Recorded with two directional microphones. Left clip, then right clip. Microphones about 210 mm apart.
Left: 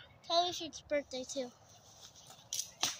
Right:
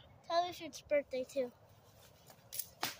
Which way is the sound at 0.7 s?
40° right (ahead or behind).